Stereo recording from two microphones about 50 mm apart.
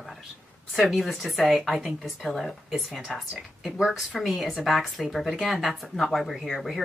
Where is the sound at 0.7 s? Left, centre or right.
Centre.